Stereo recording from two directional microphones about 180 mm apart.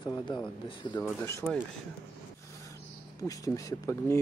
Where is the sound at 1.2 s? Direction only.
15° left (ahead or behind).